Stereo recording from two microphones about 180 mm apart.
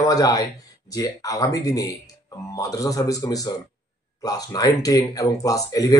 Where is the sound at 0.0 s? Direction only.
20° left (ahead or behind).